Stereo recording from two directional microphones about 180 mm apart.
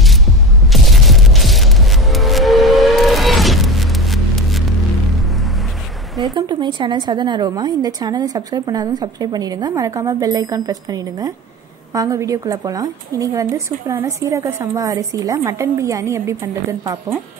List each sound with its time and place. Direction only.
0.7 s music: centre (ahead or behind)
6.3 s a woman's voice: 25° right (ahead or behind)